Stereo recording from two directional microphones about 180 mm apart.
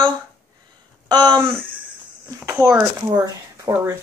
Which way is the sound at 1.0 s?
25° right (ahead or behind).